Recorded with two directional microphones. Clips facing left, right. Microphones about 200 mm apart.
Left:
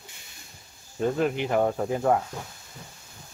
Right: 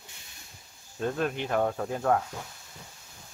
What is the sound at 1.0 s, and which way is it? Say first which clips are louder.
Speech: left 5 dB; 10° left (ahead or behind).